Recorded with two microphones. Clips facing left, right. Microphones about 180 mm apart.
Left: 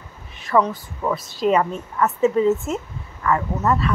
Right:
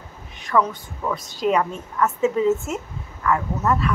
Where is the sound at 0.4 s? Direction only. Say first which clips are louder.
Left 2 dB; centre (ahead or behind).